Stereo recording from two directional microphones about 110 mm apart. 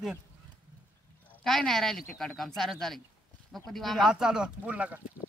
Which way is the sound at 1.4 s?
5° left (ahead or behind).